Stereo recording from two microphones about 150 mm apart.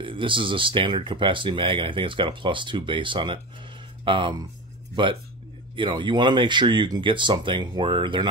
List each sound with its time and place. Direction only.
0.0 s speech: 35° right (ahead or behind)